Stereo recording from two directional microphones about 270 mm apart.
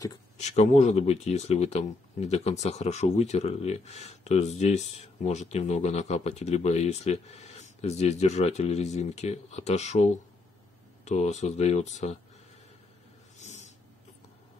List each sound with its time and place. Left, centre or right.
0.4 s speech: left
13.4 s snort: left